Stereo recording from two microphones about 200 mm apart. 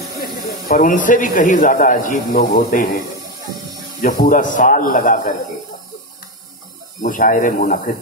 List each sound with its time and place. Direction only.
0.2 s speech: 45° left (ahead or behind)
4.0 s speech: 45° left (ahead or behind)
7.0 s speech: 40° left (ahead or behind)